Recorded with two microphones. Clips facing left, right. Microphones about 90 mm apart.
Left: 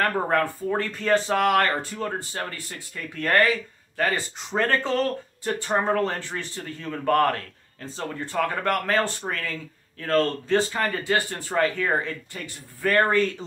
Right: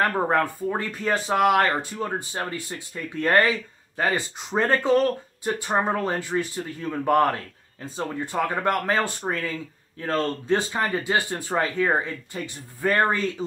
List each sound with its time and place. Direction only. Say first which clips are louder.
0.0 s speech: right 1 dB; 20° right (ahead or behind)